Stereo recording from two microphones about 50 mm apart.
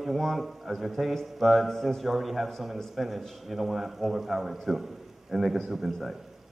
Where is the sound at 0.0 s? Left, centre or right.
Centre.